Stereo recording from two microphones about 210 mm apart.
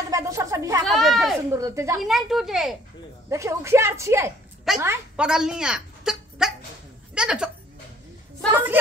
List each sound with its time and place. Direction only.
0.1 s a sound: 15° right (ahead or behind)
0.8 s speech: centre (ahead or behind)
1.5 s speech: 15° right (ahead or behind)
2.0 s speech: centre (ahead or behind)
3.3 s speech: 15° right (ahead or behind)